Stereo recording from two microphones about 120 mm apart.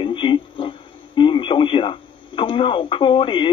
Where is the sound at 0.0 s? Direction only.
45° left (ahead or behind).